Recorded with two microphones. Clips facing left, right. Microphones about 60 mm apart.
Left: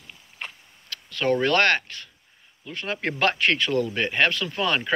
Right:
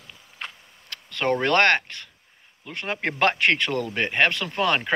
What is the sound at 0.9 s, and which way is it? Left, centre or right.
Speech, right.